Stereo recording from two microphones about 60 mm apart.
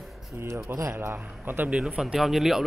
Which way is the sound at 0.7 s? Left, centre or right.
Right.